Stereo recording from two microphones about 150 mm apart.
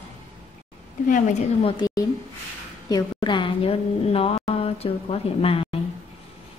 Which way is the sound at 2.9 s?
30° left (ahead or behind).